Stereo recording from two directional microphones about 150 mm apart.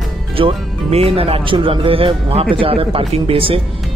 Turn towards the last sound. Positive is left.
turn(degrees=-40)  # may be behind; listen again after turning